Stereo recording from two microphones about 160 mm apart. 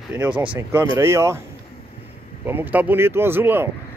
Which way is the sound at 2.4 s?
15° right (ahead or behind).